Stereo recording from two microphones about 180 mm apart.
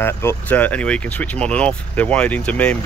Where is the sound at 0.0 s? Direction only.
15° left (ahead or behind).